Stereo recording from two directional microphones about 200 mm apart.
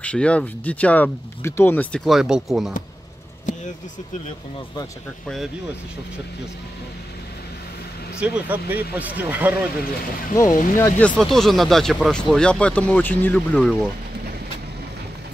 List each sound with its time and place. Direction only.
0.0 s speech: 5° left (ahead or behind)
8.2 s speech: 10° right (ahead or behind)
10.5 s speech: 40° left (ahead or behind)
10.8 s speech: 5° left (ahead or behind)